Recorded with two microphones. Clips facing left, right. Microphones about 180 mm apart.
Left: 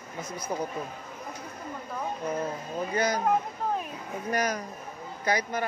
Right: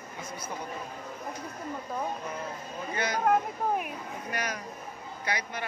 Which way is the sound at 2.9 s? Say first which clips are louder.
Left 4 dB; 40° left (ahead or behind).